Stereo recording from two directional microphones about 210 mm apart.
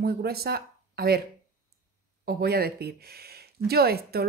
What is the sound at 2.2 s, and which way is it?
Speech, 50° right (ahead or behind).